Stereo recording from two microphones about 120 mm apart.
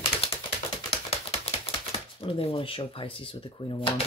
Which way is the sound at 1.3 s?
55° left (ahead or behind).